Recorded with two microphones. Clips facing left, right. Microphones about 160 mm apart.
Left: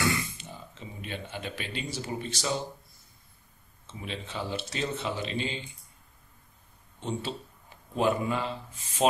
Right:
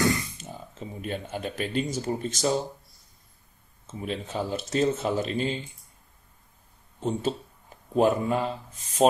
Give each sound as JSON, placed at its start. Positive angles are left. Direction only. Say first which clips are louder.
{"t": 0.0, "sound": "speech", "louder": "right 4 dB", "side_deg": -40}
{"t": 3.8, "sound": "speech", "louder": "right 6 dB", "side_deg": -45}
{"t": 7.0, "sound": "speech", "louder": "right 6 dB", "side_deg": -40}